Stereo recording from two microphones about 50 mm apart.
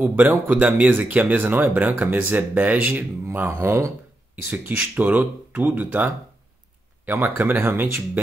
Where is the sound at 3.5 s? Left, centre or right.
Right.